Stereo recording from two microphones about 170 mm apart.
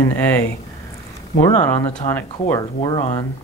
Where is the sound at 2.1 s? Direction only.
15° left (ahead or behind).